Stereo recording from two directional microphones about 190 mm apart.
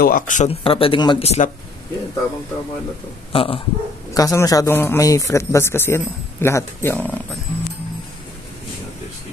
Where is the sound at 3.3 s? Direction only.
30° left (ahead or behind).